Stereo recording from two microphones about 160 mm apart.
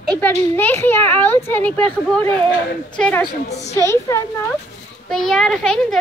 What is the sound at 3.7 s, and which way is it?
Speech, 15° left (ahead or behind).